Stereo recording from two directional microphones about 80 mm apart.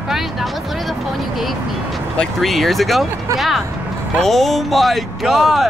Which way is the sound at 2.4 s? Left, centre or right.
Centre.